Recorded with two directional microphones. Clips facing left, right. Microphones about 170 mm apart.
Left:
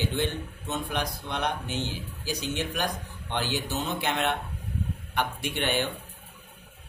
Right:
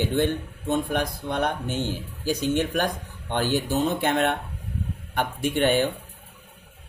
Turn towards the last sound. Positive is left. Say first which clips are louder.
# right 7 dB
turn(degrees=-45)  # may be behind; listen again after turning